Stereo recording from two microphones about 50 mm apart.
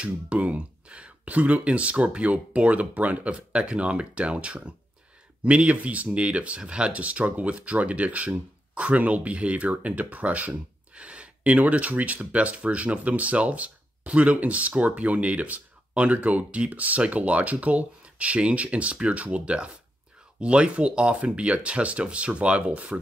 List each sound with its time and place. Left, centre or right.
0.0 s speech: right